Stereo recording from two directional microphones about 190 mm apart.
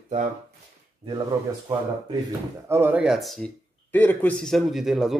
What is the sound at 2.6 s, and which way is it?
A man's voice, 10° right (ahead or behind).